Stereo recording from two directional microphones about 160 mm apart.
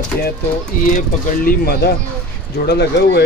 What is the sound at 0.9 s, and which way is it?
Speech, 60° left (ahead or behind).